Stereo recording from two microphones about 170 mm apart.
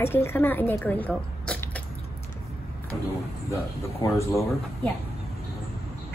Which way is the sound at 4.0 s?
15° left (ahead or behind).